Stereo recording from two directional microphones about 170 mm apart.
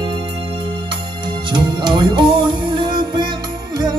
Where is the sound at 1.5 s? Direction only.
25° right (ahead or behind).